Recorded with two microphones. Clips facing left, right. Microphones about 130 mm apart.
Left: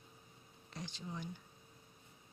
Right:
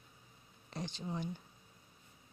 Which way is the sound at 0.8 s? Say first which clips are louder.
Right 5 dB; 30° right (ahead or behind).